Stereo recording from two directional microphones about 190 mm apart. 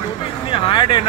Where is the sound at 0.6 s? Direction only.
25° left (ahead or behind).